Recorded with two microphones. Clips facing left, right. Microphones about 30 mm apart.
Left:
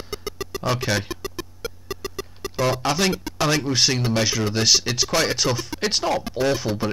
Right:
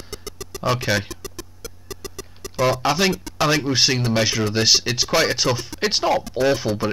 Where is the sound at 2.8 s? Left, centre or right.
Centre.